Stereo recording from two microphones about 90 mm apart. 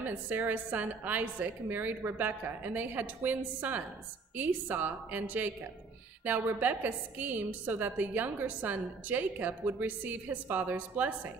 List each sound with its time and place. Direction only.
0.0 s a woman's voice: 20° right (ahead or behind)